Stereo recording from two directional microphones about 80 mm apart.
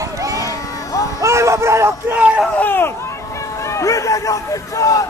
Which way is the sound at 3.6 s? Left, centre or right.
Left.